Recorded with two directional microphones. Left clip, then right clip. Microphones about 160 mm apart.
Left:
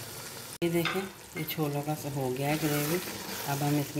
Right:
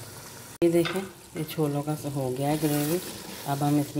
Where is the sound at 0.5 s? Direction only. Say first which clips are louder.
Right 7 dB; 35° right (ahead or behind).